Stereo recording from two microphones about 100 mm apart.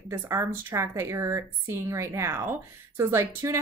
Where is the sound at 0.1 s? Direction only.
25° right (ahead or behind).